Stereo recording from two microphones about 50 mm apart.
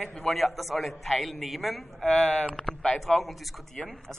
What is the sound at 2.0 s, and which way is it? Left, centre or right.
Speech, left.